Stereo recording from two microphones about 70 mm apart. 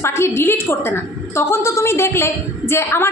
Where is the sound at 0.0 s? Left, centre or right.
Left.